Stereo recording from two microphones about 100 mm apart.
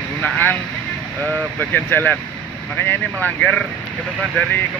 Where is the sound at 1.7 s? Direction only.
20° left (ahead or behind).